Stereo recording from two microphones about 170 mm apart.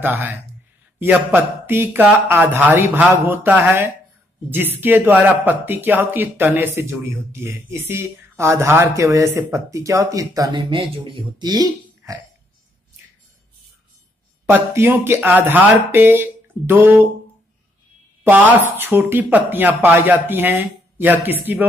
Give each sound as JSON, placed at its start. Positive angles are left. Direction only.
{"t": 0.0, "sound": "speech", "side_deg": -10}
{"t": 14.4, "sound": "speech", "side_deg": -15}
{"t": 18.2, "sound": "speech", "side_deg": -10}